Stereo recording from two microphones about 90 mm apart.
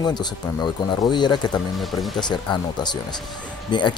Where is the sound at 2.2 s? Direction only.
55° left (ahead or behind).